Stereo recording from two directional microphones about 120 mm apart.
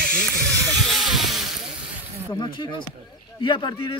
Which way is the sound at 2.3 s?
40° left (ahead or behind).